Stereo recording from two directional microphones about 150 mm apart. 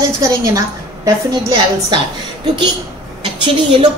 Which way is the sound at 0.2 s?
20° right (ahead or behind).